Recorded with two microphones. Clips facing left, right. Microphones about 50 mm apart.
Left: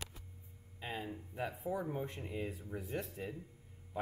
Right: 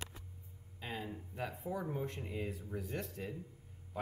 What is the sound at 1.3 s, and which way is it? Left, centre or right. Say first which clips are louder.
Speech: left 2 dB; centre.